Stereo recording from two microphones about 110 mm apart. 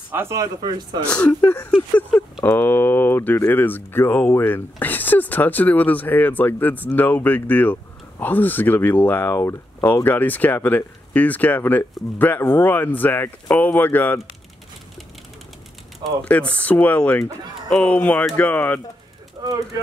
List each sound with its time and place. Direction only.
0.1 s speech: 25° right (ahead or behind)
0.7 s speech: 40° right (ahead or behind)
1.0 s speech: 10° left (ahead or behind)
16.0 s speech: 10° left (ahead or behind)
19.4 s speech: 35° right (ahead or behind)